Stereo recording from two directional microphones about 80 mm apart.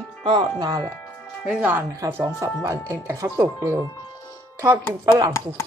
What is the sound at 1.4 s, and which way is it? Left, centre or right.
A woman's voice, centre.